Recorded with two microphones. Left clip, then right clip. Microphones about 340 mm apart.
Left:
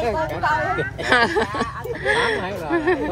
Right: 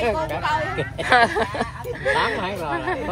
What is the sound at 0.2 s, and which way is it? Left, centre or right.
Speech, left.